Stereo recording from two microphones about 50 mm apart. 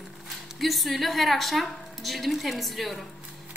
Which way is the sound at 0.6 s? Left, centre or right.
Centre.